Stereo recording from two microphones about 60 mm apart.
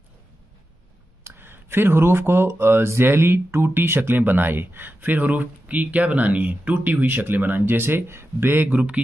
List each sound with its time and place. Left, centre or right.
1.2 s speech: right
8.7 s speech: right